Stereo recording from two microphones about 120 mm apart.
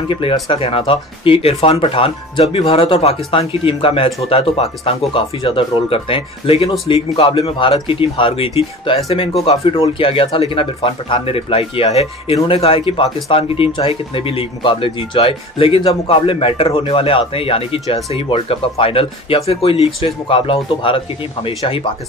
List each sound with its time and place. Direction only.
0.1 s speech: 45° left (ahead or behind)